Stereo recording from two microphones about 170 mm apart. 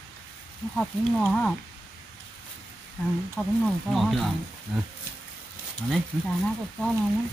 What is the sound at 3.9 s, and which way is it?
Speech, centre (ahead or behind).